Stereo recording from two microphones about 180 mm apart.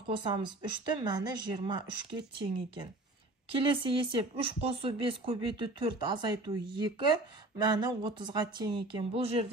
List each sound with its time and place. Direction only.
0.1 s speech: 25° right (ahead or behind)
3.5 s speech: 30° right (ahead or behind)